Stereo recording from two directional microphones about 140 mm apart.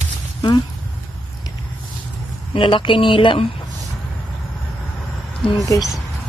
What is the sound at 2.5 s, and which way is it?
Speech, 35° left (ahead or behind).